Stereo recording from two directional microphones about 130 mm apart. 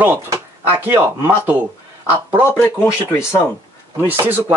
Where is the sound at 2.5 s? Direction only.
15° left (ahead or behind).